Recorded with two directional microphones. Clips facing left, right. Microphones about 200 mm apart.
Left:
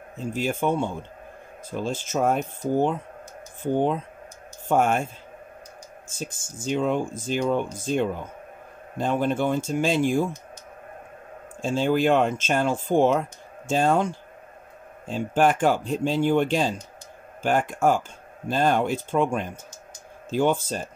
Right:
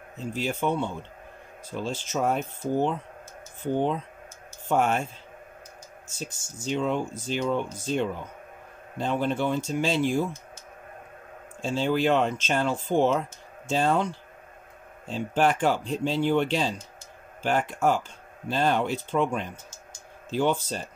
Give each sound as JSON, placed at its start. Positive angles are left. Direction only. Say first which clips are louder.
{"t": 0.2, "sound": "speech", "louder": "left 3 dB", "side_deg": 50}
{"t": 6.1, "sound": "speech", "louder": "left 3 dB", "side_deg": 50}
{"t": 11.6, "sound": "speech", "louder": "left 3 dB", "side_deg": 50}